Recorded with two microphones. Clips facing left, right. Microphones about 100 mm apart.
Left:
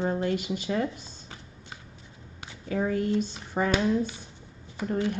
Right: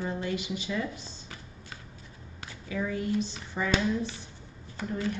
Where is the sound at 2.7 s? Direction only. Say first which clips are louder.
Left 4 dB; 45° left (ahead or behind).